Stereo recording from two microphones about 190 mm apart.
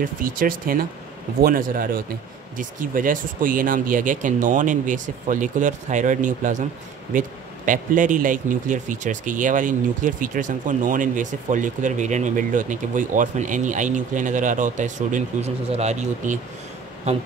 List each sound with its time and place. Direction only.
0.0 s a man's voice: 45° right (ahead or behind)